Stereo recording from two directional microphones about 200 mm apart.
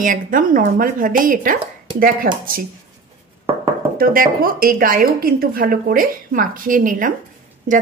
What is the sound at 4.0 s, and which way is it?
Speech, 45° right (ahead or behind).